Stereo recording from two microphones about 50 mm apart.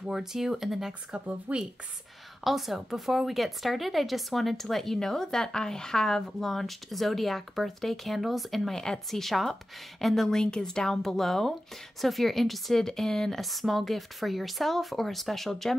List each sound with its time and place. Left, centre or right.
0.1 s speech: centre
1.5 s speech: right
2.4 s speech: centre